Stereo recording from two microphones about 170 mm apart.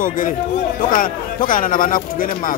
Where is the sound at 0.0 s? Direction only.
55° left (ahead or behind).